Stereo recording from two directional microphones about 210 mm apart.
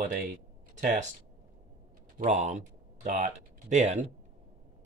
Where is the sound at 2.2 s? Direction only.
35° right (ahead or behind).